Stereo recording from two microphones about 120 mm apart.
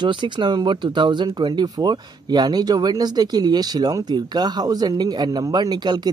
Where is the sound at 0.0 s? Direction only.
40° right (ahead or behind).